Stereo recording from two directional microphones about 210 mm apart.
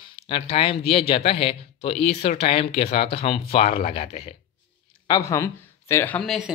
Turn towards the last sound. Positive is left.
turn(degrees=0)  # may be behind; listen again after turning